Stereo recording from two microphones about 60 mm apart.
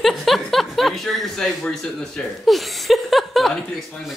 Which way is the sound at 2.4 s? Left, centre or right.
Centre.